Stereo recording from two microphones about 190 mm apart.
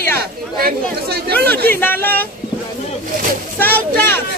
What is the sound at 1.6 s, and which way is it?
Speech, 10° left (ahead or behind).